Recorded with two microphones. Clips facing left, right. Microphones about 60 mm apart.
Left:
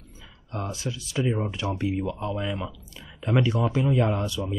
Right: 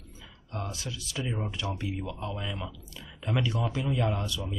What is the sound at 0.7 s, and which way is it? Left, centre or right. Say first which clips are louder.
Speech: left 5 dB; left.